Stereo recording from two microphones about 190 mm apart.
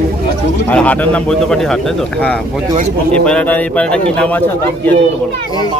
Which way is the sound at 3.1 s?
5° left (ahead or behind).